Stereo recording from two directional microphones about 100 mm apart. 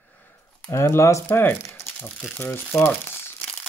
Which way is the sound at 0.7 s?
30° left (ahead or behind).